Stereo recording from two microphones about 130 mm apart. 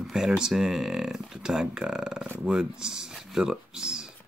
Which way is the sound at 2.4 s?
5° right (ahead or behind).